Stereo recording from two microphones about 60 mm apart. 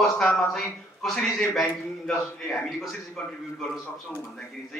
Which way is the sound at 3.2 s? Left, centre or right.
Centre.